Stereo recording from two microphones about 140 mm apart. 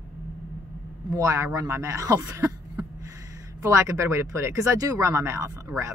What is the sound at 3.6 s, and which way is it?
Speech, 20° right (ahead or behind).